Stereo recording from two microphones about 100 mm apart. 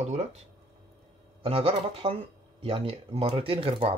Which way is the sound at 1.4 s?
70° right (ahead or behind).